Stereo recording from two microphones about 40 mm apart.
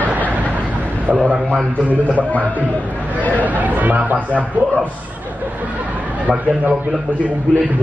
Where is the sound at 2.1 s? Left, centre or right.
Left.